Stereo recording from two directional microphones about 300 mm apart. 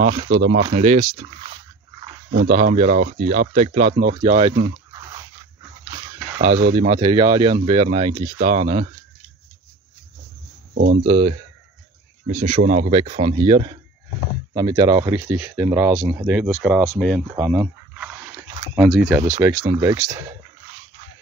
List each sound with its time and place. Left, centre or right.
0.0 s speech: right
0.3 s speech: right
0.7 s speech: right
6.3 s speech: right
10.7 s speech: right
11.1 s speech: right